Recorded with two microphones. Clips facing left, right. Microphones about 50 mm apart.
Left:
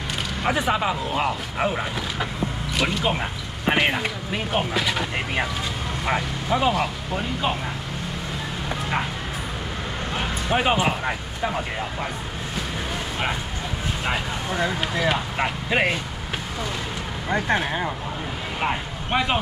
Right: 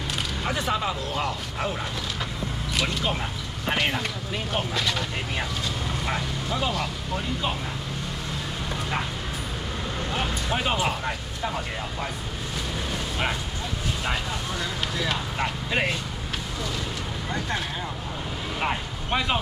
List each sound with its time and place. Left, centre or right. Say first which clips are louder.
0.4 s speech: left 5 dB; left
2.7 s speech: left 3 dB; centre
3.0 s speech: left 4 dB; left
10.5 s speech: left 6 dB; left
14.0 s speech: left 4 dB; left
17.3 s speech: left 8 dB; left
18.6 s speech: left 2 dB; centre